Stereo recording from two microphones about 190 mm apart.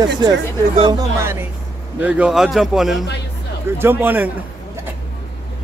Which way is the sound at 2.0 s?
5° right (ahead or behind).